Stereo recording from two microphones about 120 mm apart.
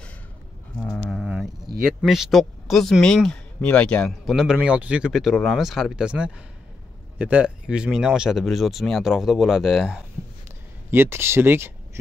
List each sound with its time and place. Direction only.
0.8 s a sound: 5° left (ahead or behind)
1.2 s speech: 5° right (ahead or behind)
4.3 s speech: 5° right (ahead or behind)
10.9 s speech: 20° right (ahead or behind)